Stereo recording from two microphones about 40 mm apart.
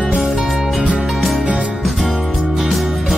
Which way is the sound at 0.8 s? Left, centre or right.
Right.